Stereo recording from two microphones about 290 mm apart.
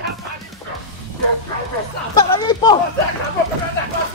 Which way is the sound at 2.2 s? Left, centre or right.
Centre.